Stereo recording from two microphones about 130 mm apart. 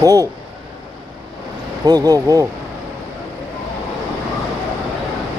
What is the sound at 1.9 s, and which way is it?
Speech, 30° right (ahead or behind).